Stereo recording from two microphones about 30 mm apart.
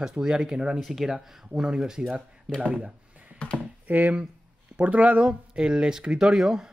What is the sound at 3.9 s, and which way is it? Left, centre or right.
Speech, right.